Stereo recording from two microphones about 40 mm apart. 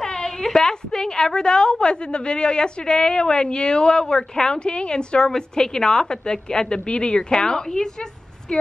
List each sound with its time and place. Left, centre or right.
0.0 s a woman's voice: centre